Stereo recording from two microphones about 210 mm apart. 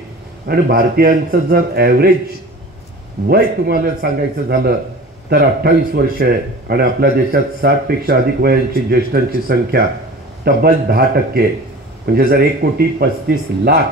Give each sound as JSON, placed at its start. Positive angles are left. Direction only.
{"t": 0.5, "sound": "a man's voice", "side_deg": -45}
{"t": 3.3, "sound": "a man's voice", "side_deg": -50}